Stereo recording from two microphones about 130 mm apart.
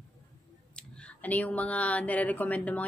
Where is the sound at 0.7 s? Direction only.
10° left (ahead or behind).